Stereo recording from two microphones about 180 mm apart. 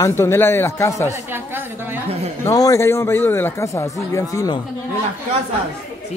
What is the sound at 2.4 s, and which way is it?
A man's voice, 20° left (ahead or behind).